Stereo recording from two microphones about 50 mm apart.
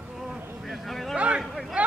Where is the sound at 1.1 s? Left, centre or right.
Right.